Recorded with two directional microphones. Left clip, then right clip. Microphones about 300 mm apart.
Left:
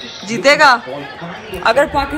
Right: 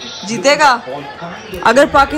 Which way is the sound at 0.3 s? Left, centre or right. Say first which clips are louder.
Left 1 dB; centre.